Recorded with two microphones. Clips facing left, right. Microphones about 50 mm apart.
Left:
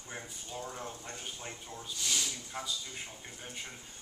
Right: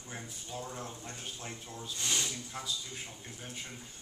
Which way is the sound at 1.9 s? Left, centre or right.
Right.